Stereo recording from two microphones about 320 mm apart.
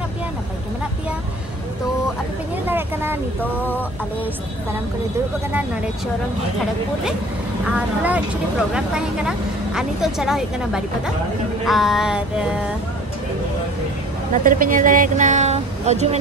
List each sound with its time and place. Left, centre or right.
2.6 s vehicle: centre
7.6 s a woman's voice: centre
14.4 s speech: right